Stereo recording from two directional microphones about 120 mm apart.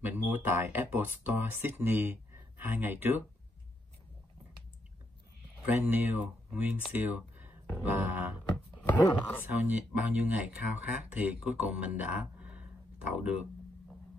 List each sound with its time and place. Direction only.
0.0 s speech: 15° right (ahead or behind)
5.7 s speech: 15° right (ahead or behind)
9.4 s speech: 10° right (ahead or behind)